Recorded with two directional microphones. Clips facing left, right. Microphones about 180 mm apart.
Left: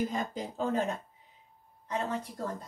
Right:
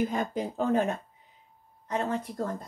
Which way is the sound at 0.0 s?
60° right (ahead or behind).